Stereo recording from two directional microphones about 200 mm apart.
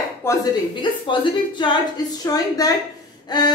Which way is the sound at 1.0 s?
25° left (ahead or behind).